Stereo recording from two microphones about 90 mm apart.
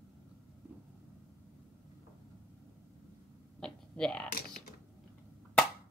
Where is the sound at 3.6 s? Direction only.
5° left (ahead or behind).